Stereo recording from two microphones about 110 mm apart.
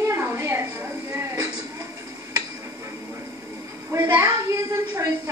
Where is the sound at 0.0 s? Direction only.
20° right (ahead or behind).